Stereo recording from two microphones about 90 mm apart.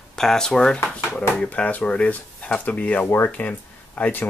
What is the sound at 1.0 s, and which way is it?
Speech, 20° left (ahead or behind).